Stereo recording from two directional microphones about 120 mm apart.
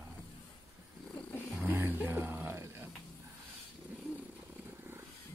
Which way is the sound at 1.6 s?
15° right (ahead or behind).